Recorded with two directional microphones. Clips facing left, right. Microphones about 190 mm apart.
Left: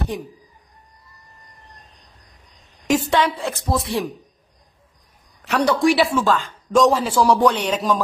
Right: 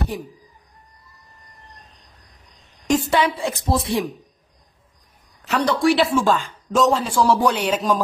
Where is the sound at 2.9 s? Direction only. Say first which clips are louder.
Even; 5° right (ahead or behind).